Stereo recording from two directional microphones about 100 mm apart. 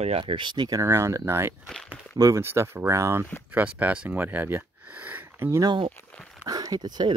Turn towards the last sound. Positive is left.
turn(degrees=-45)  # may be behind; listen again after turning